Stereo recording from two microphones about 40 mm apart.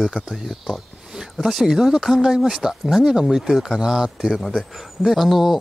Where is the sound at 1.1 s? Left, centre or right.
Centre.